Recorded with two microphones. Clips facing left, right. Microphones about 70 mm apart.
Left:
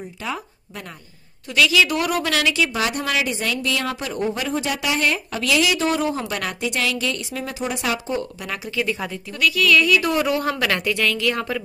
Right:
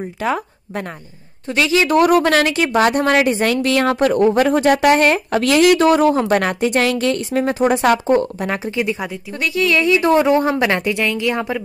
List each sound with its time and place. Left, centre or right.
0.0 s speech: right
1.5 s a woman's voice: right
8.7 s speech: centre
9.3 s a woman's voice: right